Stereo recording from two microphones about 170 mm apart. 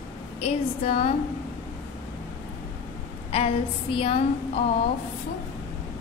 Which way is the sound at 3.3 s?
35° left (ahead or behind).